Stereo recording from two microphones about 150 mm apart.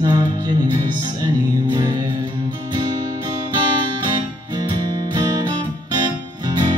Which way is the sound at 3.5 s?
30° right (ahead or behind).